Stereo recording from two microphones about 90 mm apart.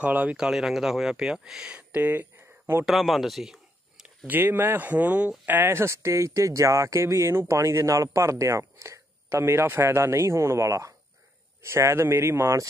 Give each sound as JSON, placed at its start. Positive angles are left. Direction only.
{"t": 0.0, "sound": "speech", "side_deg": -15}
{"t": 0.4, "sound": "speech", "side_deg": -5}
{"t": 1.9, "sound": "a sound", "side_deg": -20}
{"t": 2.8, "sound": "speech", "side_deg": 0}
{"t": 4.3, "sound": "speech", "side_deg": -20}